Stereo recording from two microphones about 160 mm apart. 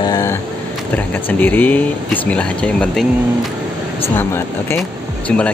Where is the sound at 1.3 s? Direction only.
10° left (ahead or behind).